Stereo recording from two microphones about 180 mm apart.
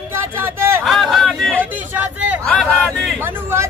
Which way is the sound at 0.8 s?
Centre (ahead or behind).